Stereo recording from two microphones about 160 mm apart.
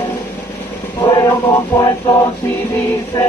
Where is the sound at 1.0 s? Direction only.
30° left (ahead or behind).